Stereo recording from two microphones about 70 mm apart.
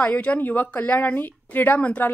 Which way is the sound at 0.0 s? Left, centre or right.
Centre.